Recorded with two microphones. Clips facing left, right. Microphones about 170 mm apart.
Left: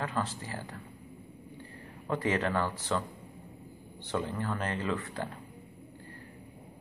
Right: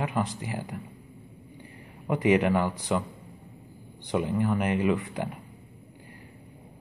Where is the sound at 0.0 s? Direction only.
15° right (ahead or behind).